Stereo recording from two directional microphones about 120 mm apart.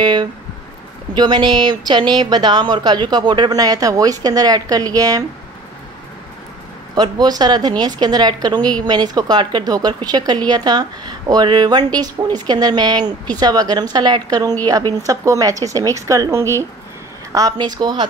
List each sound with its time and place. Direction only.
0.0 s speech: 40° right (ahead or behind)
7.0 s speech: 35° right (ahead or behind)